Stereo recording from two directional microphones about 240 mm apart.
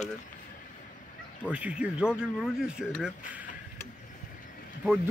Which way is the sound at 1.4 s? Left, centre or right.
Centre.